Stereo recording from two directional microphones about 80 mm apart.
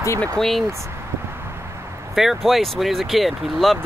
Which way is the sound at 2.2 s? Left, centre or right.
Centre.